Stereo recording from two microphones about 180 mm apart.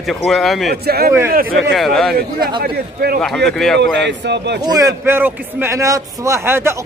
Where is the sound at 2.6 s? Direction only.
60° right (ahead or behind).